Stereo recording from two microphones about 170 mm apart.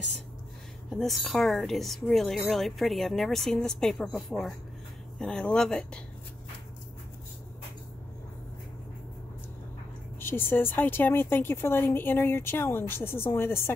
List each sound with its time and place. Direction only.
0.8 s speech: centre (ahead or behind)
10.2 s speech: 15° left (ahead or behind)